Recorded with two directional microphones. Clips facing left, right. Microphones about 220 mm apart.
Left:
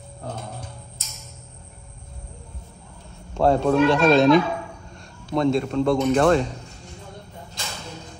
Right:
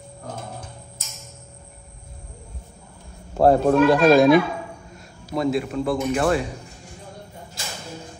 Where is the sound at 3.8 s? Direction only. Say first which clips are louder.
Right 2 dB; 10° right (ahead or behind).